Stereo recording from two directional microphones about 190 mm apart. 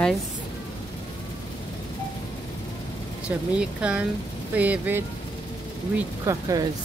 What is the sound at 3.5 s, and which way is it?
Speech, 5° right (ahead or behind).